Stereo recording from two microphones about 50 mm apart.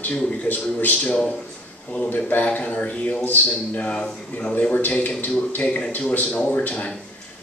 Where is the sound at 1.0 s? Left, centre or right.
Centre.